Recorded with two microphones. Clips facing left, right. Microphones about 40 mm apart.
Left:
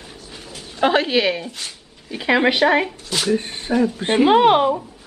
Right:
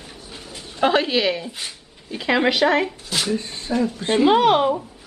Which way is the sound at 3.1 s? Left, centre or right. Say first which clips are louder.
Left 3 dB; centre.